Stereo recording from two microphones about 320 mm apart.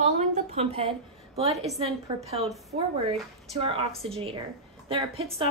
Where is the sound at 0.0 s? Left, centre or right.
Right.